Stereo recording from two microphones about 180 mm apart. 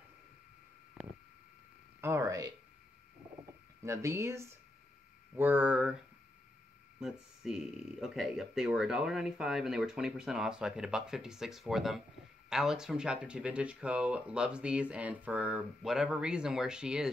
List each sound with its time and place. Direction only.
2.0 s speech: 15° right (ahead or behind)
3.8 s speech: 15° right (ahead or behind)
7.0 s speech: 5° right (ahead or behind)